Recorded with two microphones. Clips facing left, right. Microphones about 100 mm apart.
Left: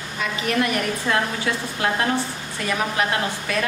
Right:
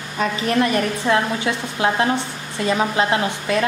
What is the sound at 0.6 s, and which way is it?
A woman's voice, 25° right (ahead or behind).